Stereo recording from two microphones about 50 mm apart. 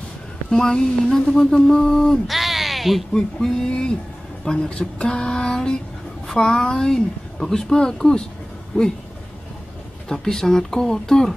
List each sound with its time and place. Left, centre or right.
0.5 s speech: centre
2.2 s a sound: centre
3.1 s speech: centre
10.0 s speech: centre